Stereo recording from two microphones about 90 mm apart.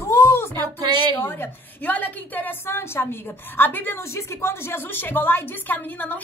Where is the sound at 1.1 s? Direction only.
25° left (ahead or behind).